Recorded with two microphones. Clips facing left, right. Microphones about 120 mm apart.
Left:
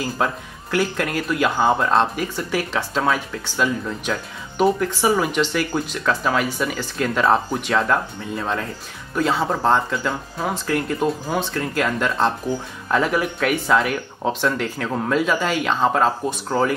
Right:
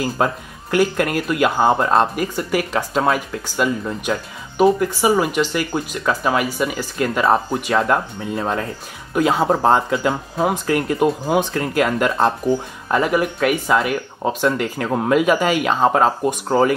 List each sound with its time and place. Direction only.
0.2 s speech: 5° right (ahead or behind)